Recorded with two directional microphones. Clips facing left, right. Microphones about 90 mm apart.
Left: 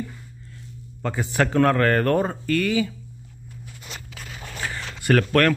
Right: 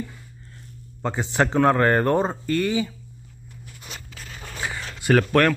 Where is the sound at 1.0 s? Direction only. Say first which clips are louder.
Right 1 dB; 20° right (ahead or behind).